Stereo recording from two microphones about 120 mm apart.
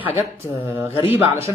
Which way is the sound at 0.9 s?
55° left (ahead or behind).